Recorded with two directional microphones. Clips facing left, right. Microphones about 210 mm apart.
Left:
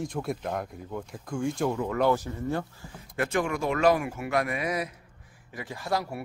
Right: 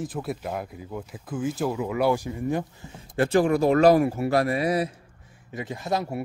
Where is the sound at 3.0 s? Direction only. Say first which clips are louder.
Right 7 dB; 30° right (ahead or behind).